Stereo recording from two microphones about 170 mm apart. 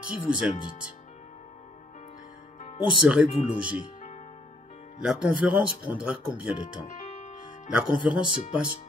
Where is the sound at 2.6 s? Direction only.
40° left (ahead or behind).